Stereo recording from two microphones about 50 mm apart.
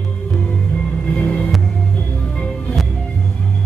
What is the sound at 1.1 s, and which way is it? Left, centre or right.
Music, left.